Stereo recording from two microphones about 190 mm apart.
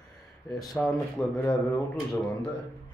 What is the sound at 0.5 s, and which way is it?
Speech, centre (ahead or behind).